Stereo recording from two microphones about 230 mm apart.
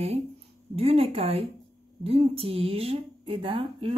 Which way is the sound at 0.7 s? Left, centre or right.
Right.